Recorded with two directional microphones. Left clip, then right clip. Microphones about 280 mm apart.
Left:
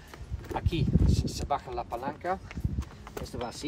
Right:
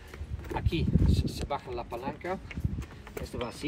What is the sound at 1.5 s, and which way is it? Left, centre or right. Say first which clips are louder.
Speech: left 5 dB; centre.